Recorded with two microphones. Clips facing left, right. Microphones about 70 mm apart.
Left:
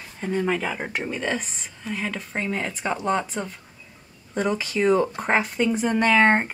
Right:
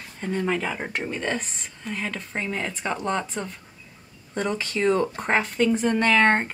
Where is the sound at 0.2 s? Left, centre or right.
Centre.